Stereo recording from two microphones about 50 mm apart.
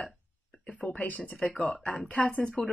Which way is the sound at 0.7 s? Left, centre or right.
Centre.